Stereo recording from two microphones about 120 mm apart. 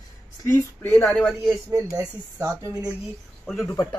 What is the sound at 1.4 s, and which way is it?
Speech, 25° right (ahead or behind).